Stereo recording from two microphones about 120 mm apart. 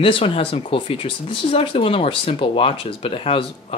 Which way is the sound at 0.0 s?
50° left (ahead or behind).